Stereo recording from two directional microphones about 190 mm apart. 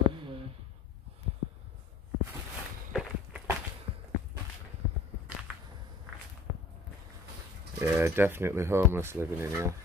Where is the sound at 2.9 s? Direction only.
5° right (ahead or behind).